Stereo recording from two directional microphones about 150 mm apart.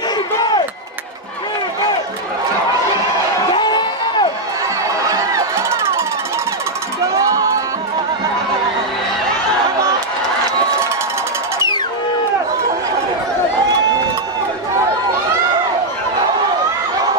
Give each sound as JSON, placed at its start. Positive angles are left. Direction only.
{"t": 3.5, "sound": "music", "side_deg": 30}
{"t": 5.1, "sound": "run", "side_deg": -20}
{"t": 7.0, "sound": "crowd", "side_deg": -20}